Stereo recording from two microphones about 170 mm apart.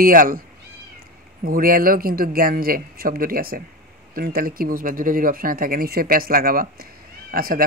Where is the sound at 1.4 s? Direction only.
55° right (ahead or behind).